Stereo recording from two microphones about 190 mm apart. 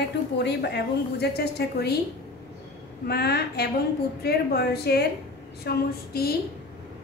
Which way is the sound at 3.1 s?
55° left (ahead or behind).